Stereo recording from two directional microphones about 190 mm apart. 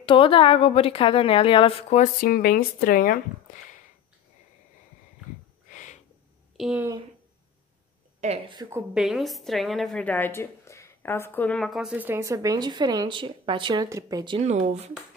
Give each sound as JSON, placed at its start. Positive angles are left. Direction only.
{"t": 0.0, "sound": "a woman's voice", "side_deg": 25}
{"t": 5.7, "sound": "a sound", "side_deg": 40}
{"t": 6.5, "sound": "speech", "side_deg": -5}
{"t": 8.2, "sound": "a woman's voice", "side_deg": -35}
{"t": 8.9, "sound": "a woman's voice", "side_deg": 0}
{"t": 14.4, "sound": "a woman's voice", "side_deg": -35}